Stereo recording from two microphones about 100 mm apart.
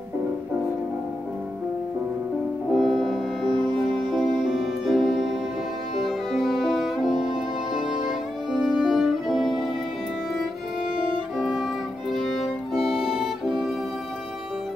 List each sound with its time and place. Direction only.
2.7 s music: centre (ahead or behind)
11.3 s violin: centre (ahead or behind)
12.1 s music: centre (ahead or behind)